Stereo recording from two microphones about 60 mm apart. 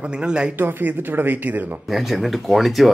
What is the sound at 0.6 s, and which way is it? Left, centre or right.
Speech, right.